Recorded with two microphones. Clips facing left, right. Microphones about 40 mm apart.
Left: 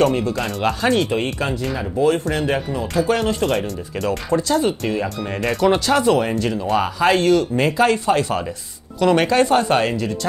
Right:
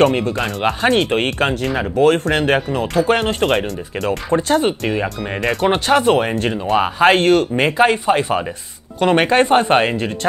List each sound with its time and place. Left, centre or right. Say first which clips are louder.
0.0 s speech: right 3 dB; right
0.6 s speech: right 2 dB; right
0.9 s speech: right 3 dB; right
3.0 s speech: right 2 dB; right
3.5 s speech: right 3 dB; centre
4.3 s speech: right 3 dB; right
9.0 s speech: right 2 dB; right